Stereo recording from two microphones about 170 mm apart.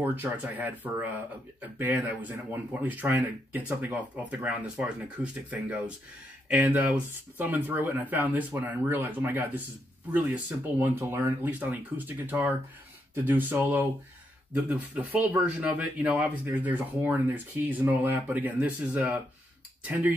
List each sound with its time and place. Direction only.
0.0 s speech: 10° right (ahead or behind)